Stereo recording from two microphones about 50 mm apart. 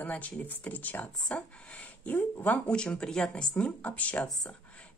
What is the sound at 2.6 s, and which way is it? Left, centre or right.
Speech, centre.